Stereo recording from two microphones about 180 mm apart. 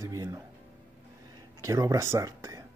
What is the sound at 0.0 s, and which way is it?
Music, 20° right (ahead or behind).